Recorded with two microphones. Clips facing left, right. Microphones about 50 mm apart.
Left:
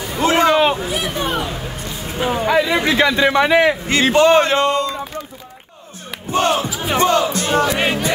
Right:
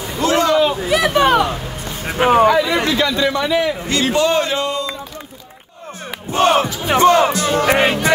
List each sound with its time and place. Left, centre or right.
0.2 s a sound: left
0.8 s speech: right
2.1 s speech: right
2.5 s a man's voice: centre; by 4.8 s left
6.3 s speech: right
7.6 s music: right